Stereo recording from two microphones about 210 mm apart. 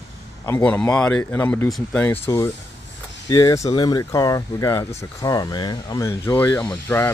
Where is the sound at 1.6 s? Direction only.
Centre (ahead or behind).